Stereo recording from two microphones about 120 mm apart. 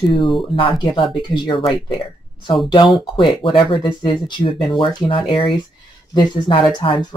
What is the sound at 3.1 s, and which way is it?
Speech, 45° left (ahead or behind).